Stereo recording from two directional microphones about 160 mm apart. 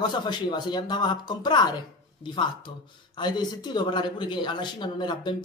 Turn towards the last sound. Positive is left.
turn(degrees=30)  # may be behind; listen again after turning